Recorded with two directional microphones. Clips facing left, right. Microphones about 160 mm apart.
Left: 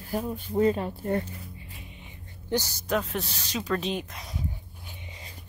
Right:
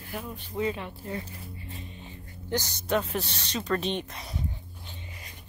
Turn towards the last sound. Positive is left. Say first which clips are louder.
# even
turn(degrees=0)  # may be behind; listen again after turning